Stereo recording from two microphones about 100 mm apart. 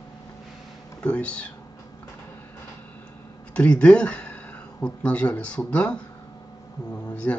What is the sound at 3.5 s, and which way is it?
Speech, 10° left (ahead or behind).